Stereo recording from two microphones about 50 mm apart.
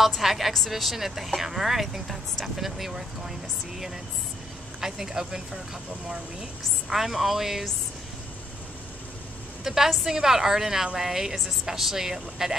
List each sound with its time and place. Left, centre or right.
0.0 s a woman's voice: centre
6.9 s a woman's voice: centre
9.7 s speech: centre